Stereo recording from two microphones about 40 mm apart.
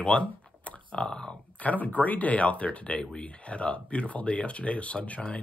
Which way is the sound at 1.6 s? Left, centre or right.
Left.